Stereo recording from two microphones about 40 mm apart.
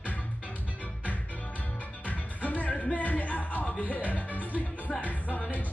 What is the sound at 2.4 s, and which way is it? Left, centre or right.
Music, left.